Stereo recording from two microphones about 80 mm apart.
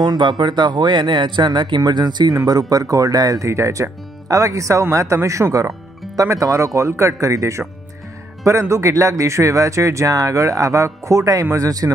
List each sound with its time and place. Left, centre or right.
0.0 s speech: right